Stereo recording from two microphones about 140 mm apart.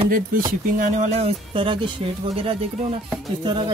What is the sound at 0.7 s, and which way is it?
Speech, 65° right (ahead or behind).